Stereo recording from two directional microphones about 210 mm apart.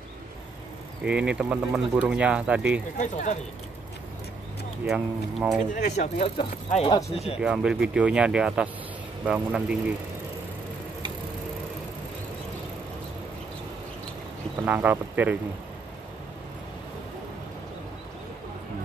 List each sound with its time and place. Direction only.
1.0 s speech: 5° right (ahead or behind)
3.0 s speech: 35° left (ahead or behind)
4.8 s speech: 5° right (ahead or behind)
5.9 s speech: 30° left (ahead or behind)
7.3 s speech: 5° right (ahead or behind)
14.6 s speech: 10° right (ahead or behind)